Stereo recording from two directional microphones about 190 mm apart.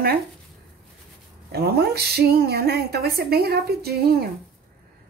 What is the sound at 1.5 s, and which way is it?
A woman's voice, 55° right (ahead or behind).